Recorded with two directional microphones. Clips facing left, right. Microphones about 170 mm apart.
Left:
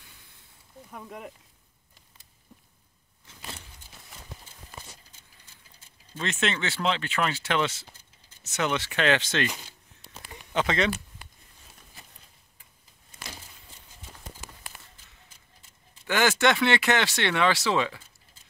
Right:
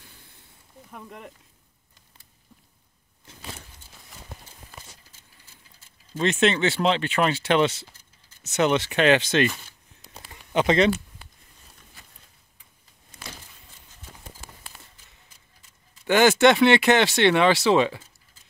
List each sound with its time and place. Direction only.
0.9 s speech: centre (ahead or behind)
6.1 s speech: 25° right (ahead or behind)
10.5 s speech: 20° right (ahead or behind)
16.1 s speech: 20° right (ahead or behind)